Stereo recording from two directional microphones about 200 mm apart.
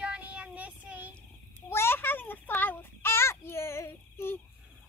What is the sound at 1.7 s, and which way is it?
Child singing, 10° left (ahead or behind).